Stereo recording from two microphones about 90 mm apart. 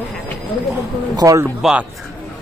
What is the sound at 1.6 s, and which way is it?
Speech, 10° right (ahead or behind).